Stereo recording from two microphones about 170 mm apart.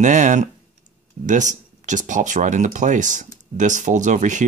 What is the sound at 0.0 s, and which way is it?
Speech, 45° right (ahead or behind).